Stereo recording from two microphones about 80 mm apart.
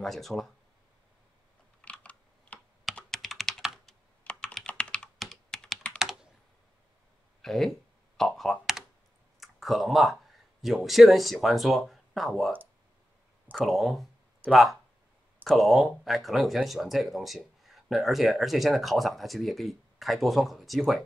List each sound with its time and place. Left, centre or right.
0.0 s speech: centre
1.8 s computer keyboard: centre
3.1 s computer keyboard: centre
4.2 s computer keyboard: centre
7.4 s speech: centre
8.2 s computer keyboard: centre
9.4 s clicking: centre
10.6 s speech: centre
13.7 s speech: centre